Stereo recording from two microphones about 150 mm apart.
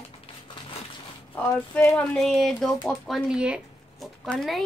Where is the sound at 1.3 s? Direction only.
10° left (ahead or behind).